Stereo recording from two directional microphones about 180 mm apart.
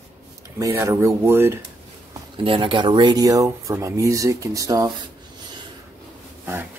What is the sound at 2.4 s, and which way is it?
Speech, 30° right (ahead or behind).